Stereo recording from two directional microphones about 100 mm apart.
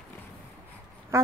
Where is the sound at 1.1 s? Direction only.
30° right (ahead or behind).